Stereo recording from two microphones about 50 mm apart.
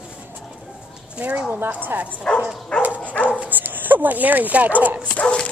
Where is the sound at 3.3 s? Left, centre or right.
Right.